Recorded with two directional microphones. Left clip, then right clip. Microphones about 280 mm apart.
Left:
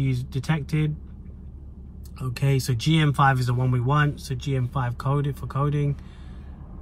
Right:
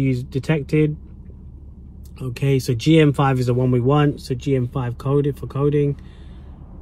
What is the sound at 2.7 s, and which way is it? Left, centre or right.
Speech, left.